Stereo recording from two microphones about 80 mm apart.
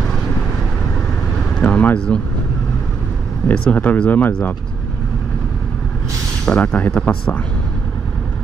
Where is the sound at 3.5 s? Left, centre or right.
Centre.